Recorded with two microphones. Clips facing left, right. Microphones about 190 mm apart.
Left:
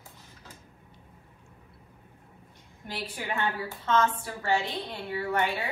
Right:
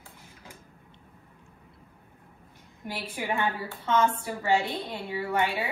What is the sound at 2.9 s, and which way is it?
A woman's voice, 15° right (ahead or behind).